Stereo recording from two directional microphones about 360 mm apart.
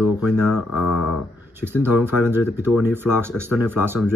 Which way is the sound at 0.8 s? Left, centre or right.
Left.